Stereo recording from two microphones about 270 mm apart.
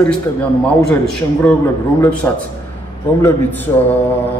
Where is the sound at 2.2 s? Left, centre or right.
Centre.